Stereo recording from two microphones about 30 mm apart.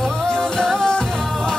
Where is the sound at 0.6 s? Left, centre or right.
Centre.